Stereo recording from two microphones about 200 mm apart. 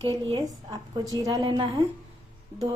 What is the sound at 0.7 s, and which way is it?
A woman's voice, 20° right (ahead or behind).